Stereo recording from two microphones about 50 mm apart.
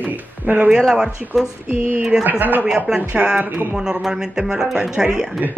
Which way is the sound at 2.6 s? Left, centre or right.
Centre.